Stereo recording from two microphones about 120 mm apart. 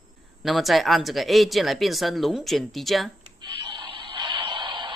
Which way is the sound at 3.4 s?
45° right (ahead or behind).